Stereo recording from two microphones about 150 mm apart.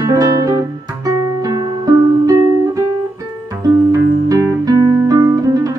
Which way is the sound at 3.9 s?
20° right (ahead or behind).